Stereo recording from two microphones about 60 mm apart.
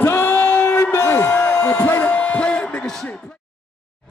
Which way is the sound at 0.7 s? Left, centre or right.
Left.